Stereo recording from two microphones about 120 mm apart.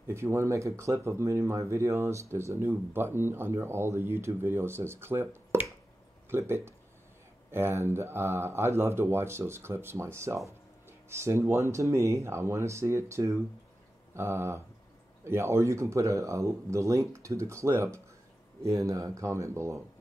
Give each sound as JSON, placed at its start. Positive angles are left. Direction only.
{"t": 0.0, "sound": "speech", "side_deg": -20}